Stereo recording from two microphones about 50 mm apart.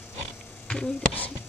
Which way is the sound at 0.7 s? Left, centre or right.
Centre.